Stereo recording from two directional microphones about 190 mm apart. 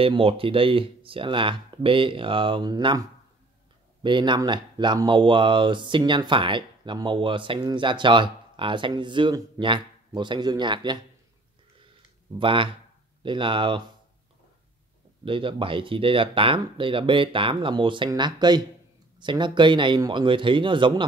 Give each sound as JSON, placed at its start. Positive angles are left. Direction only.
{"t": 0.0, "sound": "speech", "side_deg": -30}
{"t": 12.4, "sound": "speech", "side_deg": -25}
{"t": 15.2, "sound": "speech", "side_deg": -30}